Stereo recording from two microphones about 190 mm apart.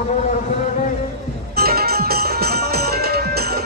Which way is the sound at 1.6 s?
55° right (ahead or behind).